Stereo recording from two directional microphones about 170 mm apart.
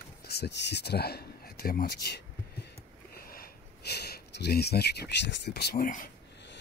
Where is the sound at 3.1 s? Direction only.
60° left (ahead or behind).